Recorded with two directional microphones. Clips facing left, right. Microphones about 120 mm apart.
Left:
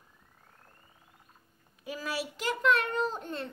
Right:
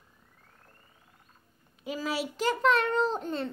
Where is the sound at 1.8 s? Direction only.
25° right (ahead or behind).